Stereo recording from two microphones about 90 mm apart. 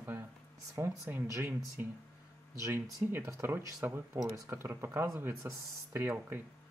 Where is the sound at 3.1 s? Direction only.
25° right (ahead or behind).